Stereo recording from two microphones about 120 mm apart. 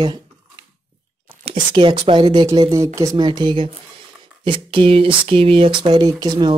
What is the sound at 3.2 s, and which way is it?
Speech, 40° right (ahead or behind).